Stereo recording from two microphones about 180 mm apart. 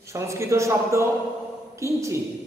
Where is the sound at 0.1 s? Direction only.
15° right (ahead or behind).